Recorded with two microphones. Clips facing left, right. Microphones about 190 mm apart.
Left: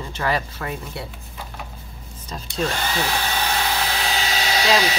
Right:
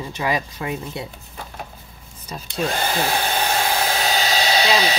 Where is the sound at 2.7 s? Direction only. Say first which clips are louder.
Right 2 dB; 50° right (ahead or behind); by 4.9 s 30° right (ahead or behind).